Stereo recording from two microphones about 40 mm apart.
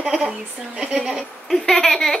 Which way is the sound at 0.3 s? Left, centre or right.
Right.